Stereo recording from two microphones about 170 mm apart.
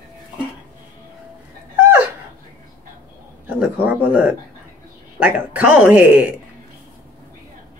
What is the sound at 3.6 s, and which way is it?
Speech, 10° right (ahead or behind).